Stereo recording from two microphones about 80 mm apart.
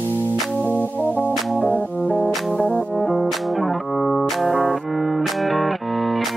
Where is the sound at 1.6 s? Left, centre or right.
Centre.